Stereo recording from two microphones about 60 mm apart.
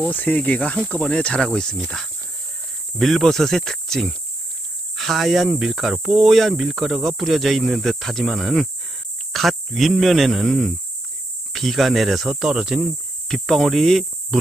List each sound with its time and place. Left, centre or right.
0.3 s speech: left; by 12.4 s centre
12.4 s speech: centre
13.3 s speech: centre